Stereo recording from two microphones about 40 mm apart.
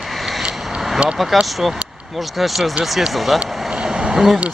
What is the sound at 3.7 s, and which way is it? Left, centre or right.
Vehicle, right.